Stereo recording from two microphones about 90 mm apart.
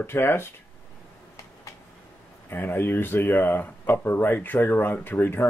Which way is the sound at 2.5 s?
25° left (ahead or behind).